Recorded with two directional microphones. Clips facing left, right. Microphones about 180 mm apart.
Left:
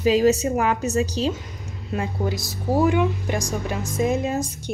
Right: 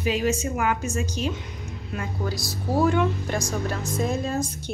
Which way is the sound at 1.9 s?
20° left (ahead or behind).